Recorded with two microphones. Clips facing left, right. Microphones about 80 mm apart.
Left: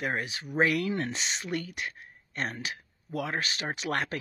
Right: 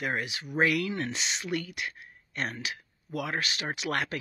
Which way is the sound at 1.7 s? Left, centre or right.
Left.